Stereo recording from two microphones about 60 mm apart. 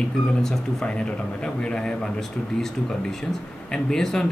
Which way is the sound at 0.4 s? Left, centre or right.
Centre.